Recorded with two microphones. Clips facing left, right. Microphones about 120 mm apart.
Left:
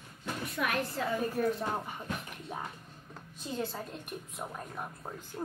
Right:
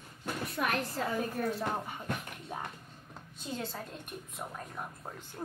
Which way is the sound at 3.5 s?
Centre (ahead or behind).